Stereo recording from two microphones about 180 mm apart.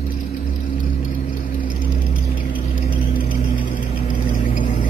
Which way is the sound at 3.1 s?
50° left (ahead or behind).